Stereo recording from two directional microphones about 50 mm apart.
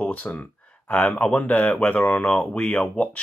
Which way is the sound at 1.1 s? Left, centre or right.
Left.